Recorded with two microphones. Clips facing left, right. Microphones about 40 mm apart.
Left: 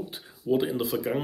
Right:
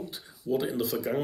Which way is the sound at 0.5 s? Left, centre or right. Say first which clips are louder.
Left 3 dB; left.